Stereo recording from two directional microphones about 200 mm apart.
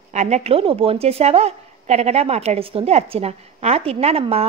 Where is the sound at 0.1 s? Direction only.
35° right (ahead or behind).